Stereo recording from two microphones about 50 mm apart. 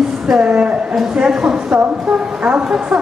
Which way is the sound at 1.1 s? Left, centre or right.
Centre.